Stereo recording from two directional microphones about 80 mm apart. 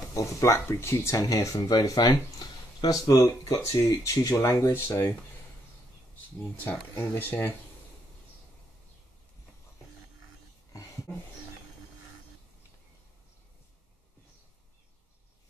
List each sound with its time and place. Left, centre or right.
0.1 s speech: left
1.1 s speech: left
7.0 s speech: left